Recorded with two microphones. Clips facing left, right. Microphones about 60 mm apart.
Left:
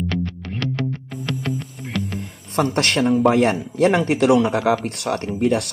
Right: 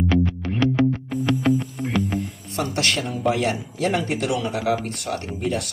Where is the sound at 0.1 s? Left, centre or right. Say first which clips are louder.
Right 5 dB; centre.